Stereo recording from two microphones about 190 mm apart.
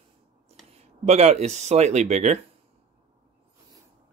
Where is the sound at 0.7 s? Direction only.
35° right (ahead or behind).